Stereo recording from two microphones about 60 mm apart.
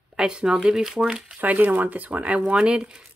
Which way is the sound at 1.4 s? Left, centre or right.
Right.